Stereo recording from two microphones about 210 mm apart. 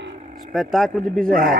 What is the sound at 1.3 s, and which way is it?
Cattle, 45° right (ahead or behind).